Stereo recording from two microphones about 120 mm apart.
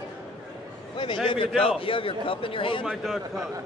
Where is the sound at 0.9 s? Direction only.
40° left (ahead or behind).